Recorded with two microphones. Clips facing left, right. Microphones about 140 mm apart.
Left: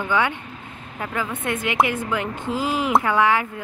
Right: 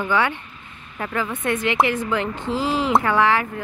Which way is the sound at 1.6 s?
20° left (ahead or behind).